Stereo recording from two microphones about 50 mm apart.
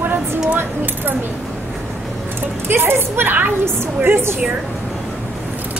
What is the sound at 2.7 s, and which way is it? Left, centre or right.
A woman's voice, right.